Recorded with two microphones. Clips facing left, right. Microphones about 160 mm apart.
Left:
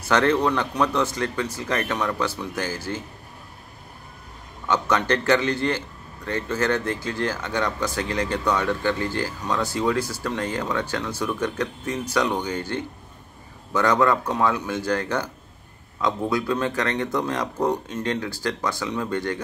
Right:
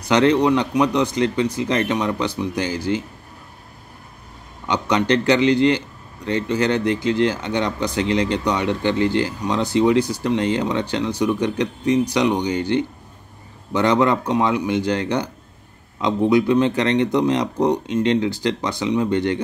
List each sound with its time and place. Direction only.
0.1 s speech: 15° right (ahead or behind)
4.6 s speech: 15° right (ahead or behind)